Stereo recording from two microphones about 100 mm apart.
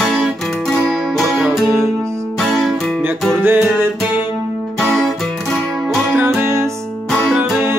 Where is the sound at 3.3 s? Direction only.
20° right (ahead or behind).